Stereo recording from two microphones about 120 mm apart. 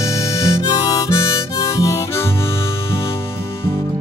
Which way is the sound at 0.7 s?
30° left (ahead or behind).